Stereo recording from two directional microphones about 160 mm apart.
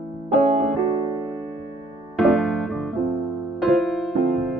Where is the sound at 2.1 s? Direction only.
Centre (ahead or behind).